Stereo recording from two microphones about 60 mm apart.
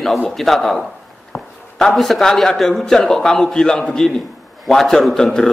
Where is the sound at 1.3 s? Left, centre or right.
Left.